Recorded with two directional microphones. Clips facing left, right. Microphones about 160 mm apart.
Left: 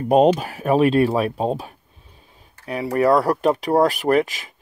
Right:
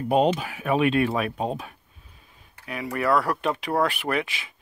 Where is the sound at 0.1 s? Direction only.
40° left (ahead or behind).